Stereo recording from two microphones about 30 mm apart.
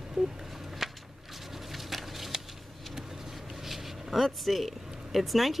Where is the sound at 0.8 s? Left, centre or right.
Centre.